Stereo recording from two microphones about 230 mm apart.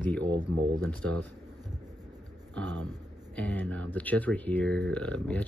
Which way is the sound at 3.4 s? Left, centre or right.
Centre.